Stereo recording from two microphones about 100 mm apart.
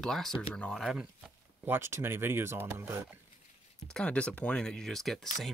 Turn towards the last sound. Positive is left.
turn(degrees=5)  # may be behind; listen again after turning